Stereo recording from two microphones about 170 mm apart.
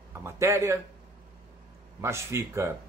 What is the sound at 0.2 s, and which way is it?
Speech, 15° right (ahead or behind).